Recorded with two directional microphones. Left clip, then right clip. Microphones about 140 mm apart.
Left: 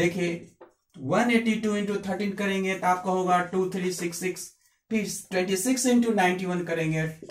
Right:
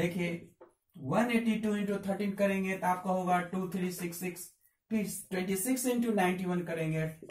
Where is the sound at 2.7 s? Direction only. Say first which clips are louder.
Left 7 dB; 15° right (ahead or behind).